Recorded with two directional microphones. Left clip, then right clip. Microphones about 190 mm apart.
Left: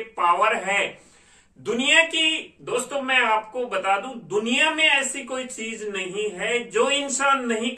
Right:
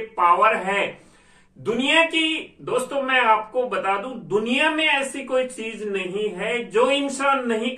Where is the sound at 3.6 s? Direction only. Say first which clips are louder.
Even; 15° left (ahead or behind).